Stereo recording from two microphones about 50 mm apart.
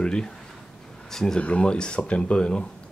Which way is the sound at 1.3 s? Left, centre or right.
Left.